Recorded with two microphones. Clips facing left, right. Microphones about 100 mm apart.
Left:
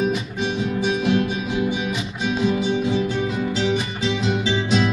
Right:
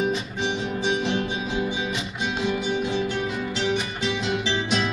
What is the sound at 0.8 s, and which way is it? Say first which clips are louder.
Music: left 4 dB; 25° right (ahead or behind).